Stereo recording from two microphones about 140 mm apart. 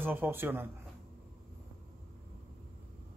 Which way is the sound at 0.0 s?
15° right (ahead or behind).